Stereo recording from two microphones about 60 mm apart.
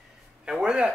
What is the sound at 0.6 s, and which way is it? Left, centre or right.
Speech, centre.